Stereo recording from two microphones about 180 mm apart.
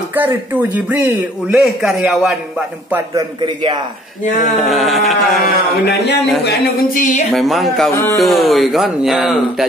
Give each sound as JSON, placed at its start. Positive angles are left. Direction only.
{"t": 0.1, "sound": "speech", "side_deg": -10}
{"t": 1.6, "sound": "speech", "side_deg": 0}
{"t": 4.6, "sound": "speech", "side_deg": 0}
{"t": 6.6, "sound": "music", "side_deg": 50}
{"t": 7.3, "sound": "speech", "side_deg": 0}
{"t": 7.9, "sound": "speech", "side_deg": 15}
{"t": 8.2, "sound": "speech", "side_deg": 0}